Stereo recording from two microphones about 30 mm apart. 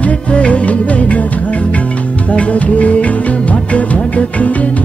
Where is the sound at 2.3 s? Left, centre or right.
Left.